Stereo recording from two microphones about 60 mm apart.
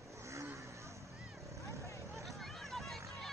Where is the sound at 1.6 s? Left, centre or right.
Right.